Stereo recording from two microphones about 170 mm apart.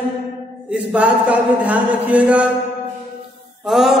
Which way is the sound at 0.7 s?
5° right (ahead or behind).